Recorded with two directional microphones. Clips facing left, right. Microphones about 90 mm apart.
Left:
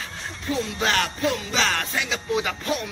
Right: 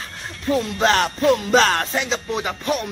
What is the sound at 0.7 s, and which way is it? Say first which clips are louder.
Music: right 6 dB; 35° right (ahead or behind).